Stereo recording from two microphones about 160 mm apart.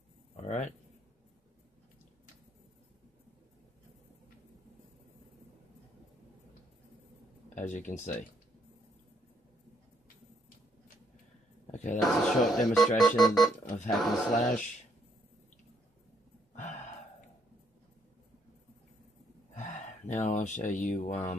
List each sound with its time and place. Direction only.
0.4 s speech: 50° left (ahead or behind)
7.4 s speech: 50° left (ahead or behind)
11.7 s a sound: 50° left (ahead or behind)
12.0 s speech: centre (ahead or behind)
19.6 s speech: 50° left (ahead or behind)